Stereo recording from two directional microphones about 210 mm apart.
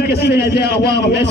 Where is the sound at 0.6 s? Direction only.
50° left (ahead or behind).